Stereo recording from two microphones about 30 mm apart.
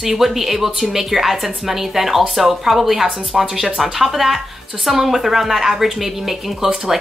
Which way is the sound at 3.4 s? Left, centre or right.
Centre.